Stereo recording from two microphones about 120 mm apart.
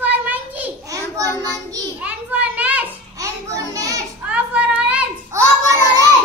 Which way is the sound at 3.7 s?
30° right (ahead or behind).